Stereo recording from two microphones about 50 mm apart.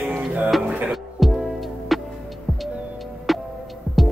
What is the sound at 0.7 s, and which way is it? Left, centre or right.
Music, right.